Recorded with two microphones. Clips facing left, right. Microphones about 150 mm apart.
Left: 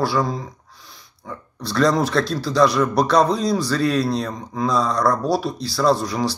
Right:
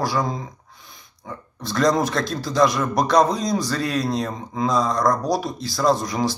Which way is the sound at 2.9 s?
45° right (ahead or behind).